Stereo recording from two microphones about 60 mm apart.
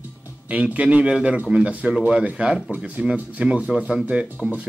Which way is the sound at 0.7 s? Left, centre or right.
Right.